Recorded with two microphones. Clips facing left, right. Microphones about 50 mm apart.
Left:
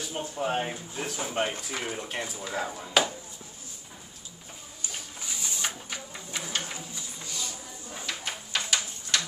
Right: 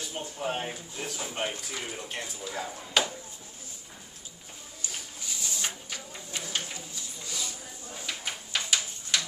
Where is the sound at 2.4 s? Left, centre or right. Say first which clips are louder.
Left 3 dB; left.